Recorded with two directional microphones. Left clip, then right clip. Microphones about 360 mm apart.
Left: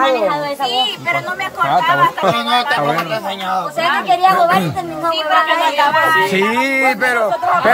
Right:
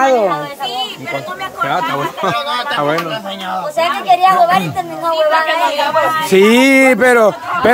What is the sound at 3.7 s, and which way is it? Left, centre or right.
Speech, right.